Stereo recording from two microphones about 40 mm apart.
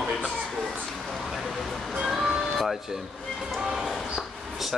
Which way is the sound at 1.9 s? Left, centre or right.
Centre.